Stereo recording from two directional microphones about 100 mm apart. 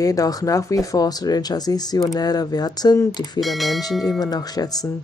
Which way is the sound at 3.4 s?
Centre (ahead or behind).